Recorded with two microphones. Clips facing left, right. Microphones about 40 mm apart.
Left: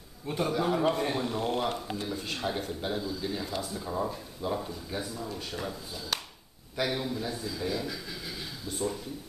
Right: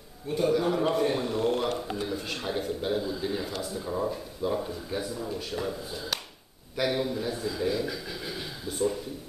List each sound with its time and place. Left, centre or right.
0.5 s speech: centre
3.0 s speech: centre
3.7 s speech: centre